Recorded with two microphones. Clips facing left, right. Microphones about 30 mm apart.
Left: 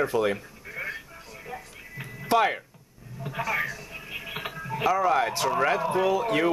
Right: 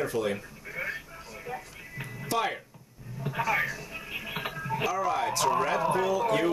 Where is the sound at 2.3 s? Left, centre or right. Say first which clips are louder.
Left 7 dB; left.